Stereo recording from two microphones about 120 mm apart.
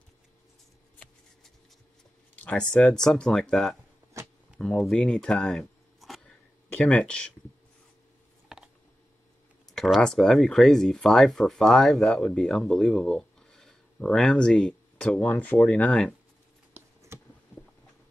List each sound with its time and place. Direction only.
2.4 s speech: 5° left (ahead or behind)
9.7 s speech: centre (ahead or behind)
16.7 s a sound: 25° right (ahead or behind)